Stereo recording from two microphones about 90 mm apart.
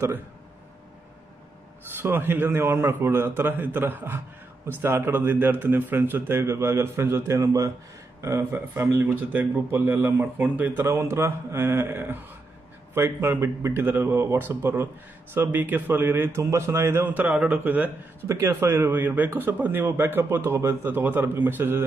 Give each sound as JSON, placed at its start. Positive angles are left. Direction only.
{"t": 2.0, "sound": "a man's voice", "side_deg": -25}
{"t": 18.3, "sound": "a man's voice", "side_deg": -30}